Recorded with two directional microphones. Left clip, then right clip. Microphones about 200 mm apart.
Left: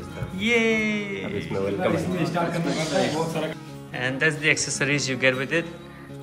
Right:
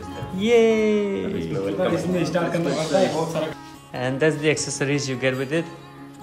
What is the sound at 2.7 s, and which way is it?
Speech, 20° right (ahead or behind).